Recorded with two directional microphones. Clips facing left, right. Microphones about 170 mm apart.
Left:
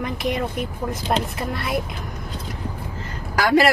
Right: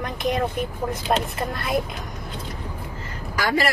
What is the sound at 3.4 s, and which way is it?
Speech, 70° left (ahead or behind).